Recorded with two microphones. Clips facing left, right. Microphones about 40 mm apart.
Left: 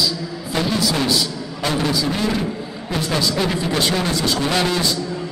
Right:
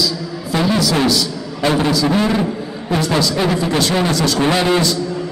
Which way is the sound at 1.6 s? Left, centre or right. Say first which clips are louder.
Right 5 dB; right.